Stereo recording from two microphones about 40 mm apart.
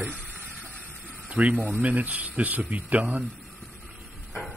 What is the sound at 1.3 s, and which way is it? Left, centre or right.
Speech, right.